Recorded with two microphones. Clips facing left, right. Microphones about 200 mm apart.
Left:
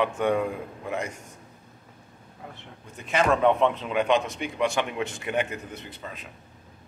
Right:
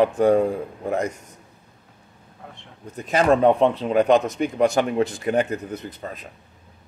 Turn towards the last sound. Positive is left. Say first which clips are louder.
# right 7 dB
turn(degrees=-40)  # may be behind; listen again after turning